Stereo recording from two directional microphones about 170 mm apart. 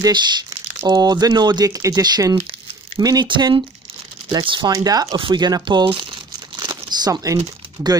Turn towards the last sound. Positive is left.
turn(degrees=-20)  # may be behind; listen again after turning